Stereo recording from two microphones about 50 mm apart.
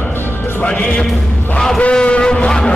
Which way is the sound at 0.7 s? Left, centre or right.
Left.